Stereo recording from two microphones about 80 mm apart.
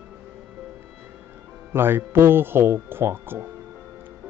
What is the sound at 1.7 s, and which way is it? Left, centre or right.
Speech, right.